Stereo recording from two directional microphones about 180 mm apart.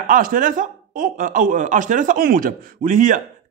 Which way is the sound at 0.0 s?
50° right (ahead or behind).